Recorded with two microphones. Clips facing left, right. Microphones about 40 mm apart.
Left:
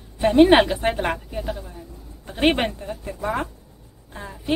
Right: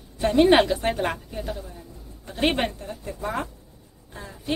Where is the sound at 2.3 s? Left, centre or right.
Left.